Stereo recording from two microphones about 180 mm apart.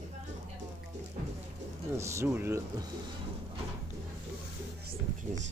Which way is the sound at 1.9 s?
15° right (ahead or behind).